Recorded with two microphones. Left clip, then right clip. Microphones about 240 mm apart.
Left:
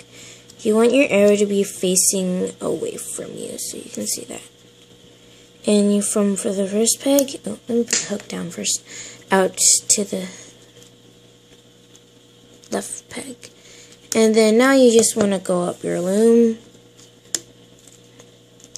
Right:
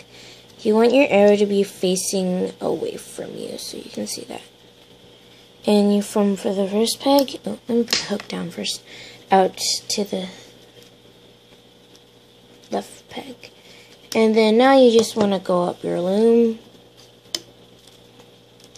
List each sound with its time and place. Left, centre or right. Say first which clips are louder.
0.6 s speech: even; centre
5.6 s speech: even; centre
12.6 s speech: even; centre